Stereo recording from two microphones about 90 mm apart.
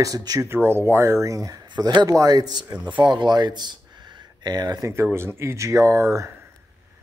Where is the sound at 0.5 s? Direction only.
25° right (ahead or behind); by 4.8 s 50° right (ahead or behind).